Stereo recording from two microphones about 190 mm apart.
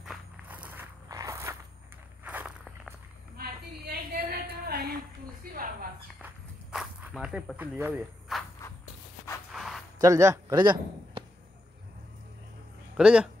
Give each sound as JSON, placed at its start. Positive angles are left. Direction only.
{"t": 0.0, "sound": "walk", "side_deg": -5}
{"t": 3.3, "sound": "a sound", "side_deg": -55}
{"t": 6.2, "sound": "walk", "side_deg": -5}
{"t": 9.5, "sound": "a sound", "side_deg": 0}
{"t": 9.9, "sound": "a man's voice", "side_deg": -15}
{"t": 12.9, "sound": "speech", "side_deg": -5}